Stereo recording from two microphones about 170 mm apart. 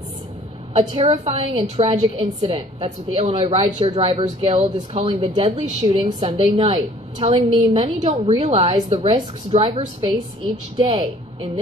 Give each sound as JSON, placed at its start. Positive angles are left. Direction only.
{"t": 0.7, "sound": "a woman's voice", "side_deg": -35}